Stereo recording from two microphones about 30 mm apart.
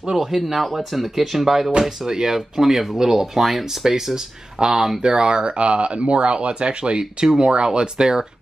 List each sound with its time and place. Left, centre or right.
0.1 s speech: centre
1.8 s speech: right
3.9 s speech: centre